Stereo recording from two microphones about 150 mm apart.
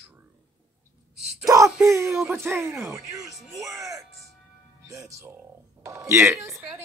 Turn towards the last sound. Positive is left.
turn(degrees=-15)  # may be behind; listen again after turning